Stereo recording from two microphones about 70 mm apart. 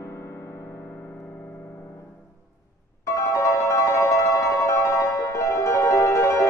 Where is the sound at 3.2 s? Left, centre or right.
Left.